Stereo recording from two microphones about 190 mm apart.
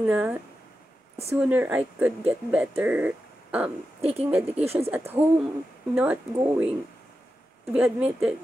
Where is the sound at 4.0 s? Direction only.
30° right (ahead or behind).